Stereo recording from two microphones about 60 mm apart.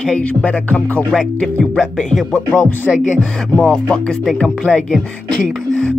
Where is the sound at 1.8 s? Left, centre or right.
Centre.